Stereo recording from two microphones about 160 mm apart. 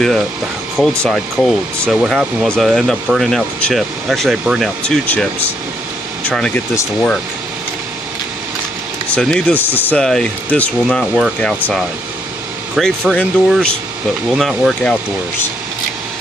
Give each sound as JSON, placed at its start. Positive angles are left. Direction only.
{"t": 0.7, "sound": "speech", "side_deg": 5}
{"t": 6.7, "sound": "speech", "side_deg": 20}
{"t": 9.1, "sound": "speech", "side_deg": 5}